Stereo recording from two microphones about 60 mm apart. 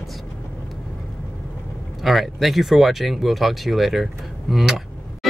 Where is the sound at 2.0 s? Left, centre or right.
Centre.